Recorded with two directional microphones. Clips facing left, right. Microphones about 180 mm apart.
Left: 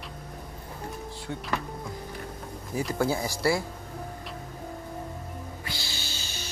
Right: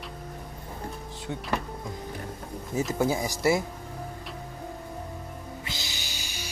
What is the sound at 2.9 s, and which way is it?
Speech, 20° right (ahead or behind).